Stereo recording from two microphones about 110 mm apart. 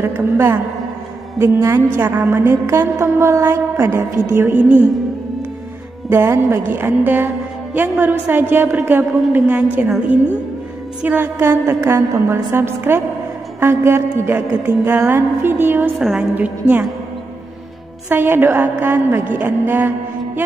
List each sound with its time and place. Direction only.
0.0 s music: 20° right (ahead or behind)
6.0 s music: 20° right (ahead or behind)
16.0 s a woman's voice: centre (ahead or behind)
16.3 s music: 15° right (ahead or behind)
18.0 s music: 20° right (ahead or behind)